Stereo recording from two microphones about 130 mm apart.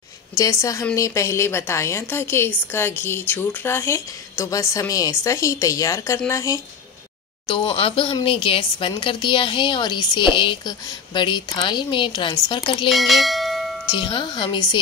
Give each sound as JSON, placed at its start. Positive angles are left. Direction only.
{"t": 0.4, "sound": "a woman's voice", "side_deg": 25}
{"t": 7.4, "sound": "speech", "side_deg": 45}
{"t": 12.9, "sound": "bell", "side_deg": 0}
{"t": 13.8, "sound": "speech", "side_deg": 35}